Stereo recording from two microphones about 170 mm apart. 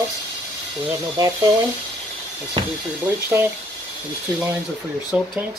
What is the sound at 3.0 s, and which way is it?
Speech, 15° right (ahead or behind).